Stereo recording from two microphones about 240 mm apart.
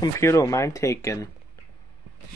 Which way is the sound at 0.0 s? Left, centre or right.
Centre.